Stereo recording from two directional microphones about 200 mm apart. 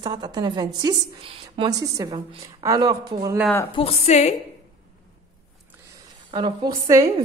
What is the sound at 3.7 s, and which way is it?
Speech, 30° left (ahead or behind).